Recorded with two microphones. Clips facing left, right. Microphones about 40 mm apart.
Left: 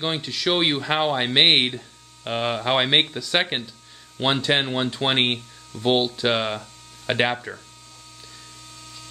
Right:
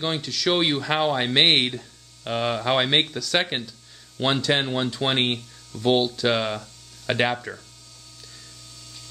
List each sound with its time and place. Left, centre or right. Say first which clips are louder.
0.0 s speech: even; centre